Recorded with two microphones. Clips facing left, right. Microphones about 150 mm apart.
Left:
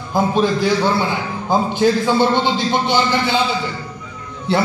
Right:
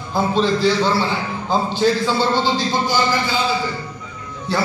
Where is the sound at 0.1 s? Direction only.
15° left (ahead or behind).